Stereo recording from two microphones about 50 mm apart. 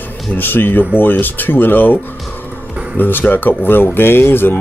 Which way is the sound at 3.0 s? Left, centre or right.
Left.